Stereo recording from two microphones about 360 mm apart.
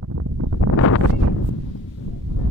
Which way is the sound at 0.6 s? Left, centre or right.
Left.